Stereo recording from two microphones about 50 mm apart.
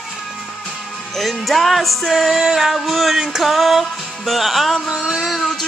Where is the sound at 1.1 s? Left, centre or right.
Centre.